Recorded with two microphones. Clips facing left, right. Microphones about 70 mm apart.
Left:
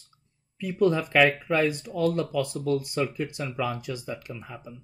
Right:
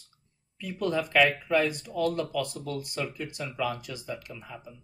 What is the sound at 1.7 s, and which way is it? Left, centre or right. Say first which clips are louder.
Speech: left 3 dB; left.